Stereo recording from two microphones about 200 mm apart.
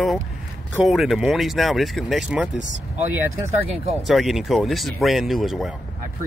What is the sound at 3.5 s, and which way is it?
Speech, 35° right (ahead or behind).